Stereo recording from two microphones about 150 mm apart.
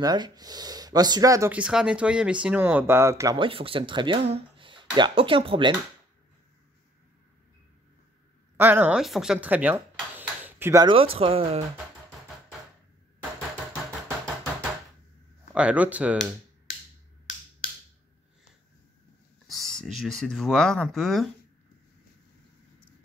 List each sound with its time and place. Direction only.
0.0 s speech: 25° right (ahead or behind)
1.5 s speech: 5° right (ahead or behind)
3.3 s speech: 35° right (ahead or behind)
8.5 s speech: 15° right (ahead or behind)
10.1 s a sound: 10° right (ahead or behind)
10.7 s speech: 25° right (ahead or behind)
11.0 s speech: 40° right (ahead or behind)
15.5 s speech: 10° right (ahead or behind)
19.4 s speech: centre (ahead or behind)